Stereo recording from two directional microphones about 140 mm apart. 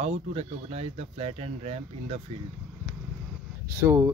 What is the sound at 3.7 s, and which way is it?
Speech, 20° right (ahead or behind).